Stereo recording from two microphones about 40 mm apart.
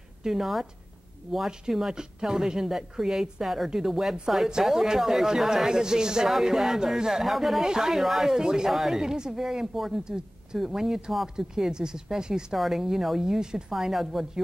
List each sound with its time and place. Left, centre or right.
0.2 s speech: centre
7.2 s speech: centre
7.6 s speech: centre
8.4 s speech: centre
8.6 s speech: centre
10.0 s speech: centre
12.5 s speech: centre
13.7 s speech: centre